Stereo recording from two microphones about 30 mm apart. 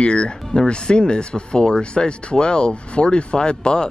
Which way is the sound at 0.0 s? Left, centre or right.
Left.